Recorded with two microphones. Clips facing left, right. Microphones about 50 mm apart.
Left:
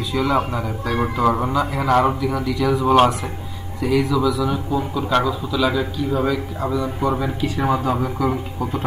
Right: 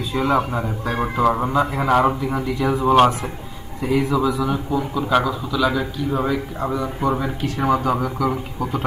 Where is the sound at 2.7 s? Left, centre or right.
Centre.